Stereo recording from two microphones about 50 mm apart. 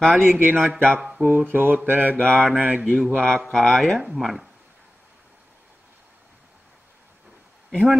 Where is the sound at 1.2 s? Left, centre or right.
Right.